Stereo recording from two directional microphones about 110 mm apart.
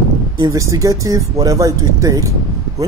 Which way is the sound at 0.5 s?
30° right (ahead or behind).